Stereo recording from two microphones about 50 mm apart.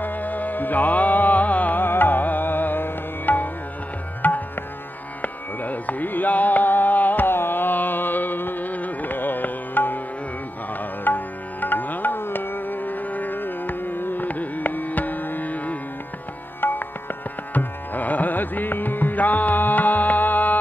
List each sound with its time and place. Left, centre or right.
0.0 s music: left
4.2 s tabla: left
5.2 s carnatic music: left
10.8 s music: left
16.6 s music: left